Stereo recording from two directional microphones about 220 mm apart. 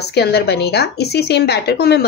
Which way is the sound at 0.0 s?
50° left (ahead or behind).